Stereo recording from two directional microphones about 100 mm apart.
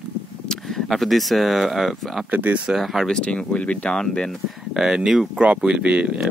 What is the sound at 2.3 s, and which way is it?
Speech, 15° right (ahead or behind).